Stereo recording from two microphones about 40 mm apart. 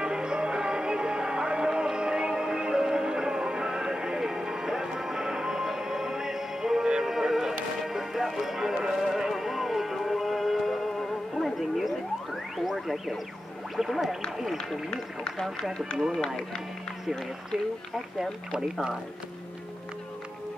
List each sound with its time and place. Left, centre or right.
0.0 s music: right; by 14.1 s centre
14.3 s speech: centre
14.9 s speech: left